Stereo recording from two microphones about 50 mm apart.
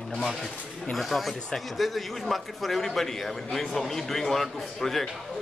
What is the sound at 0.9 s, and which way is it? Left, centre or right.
A man's voice, centre.